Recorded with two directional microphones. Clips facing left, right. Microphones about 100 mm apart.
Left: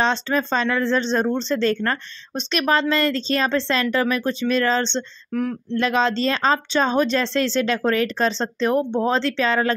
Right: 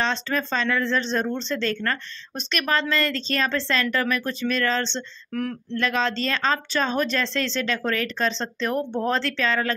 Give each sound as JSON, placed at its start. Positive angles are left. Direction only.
{"t": 0.0, "sound": "speech", "side_deg": 30}
{"t": 5.3, "sound": "a sound", "side_deg": 10}
{"t": 5.8, "sound": "speech", "side_deg": 30}
{"t": 8.7, "sound": "speech", "side_deg": 20}